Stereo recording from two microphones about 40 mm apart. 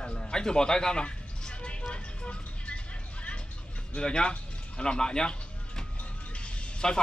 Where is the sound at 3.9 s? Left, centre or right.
Left.